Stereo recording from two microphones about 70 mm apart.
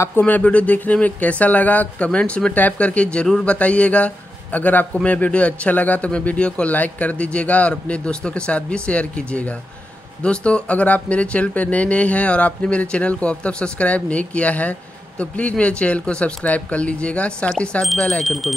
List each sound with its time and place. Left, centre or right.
0.2 s a man's voice: centre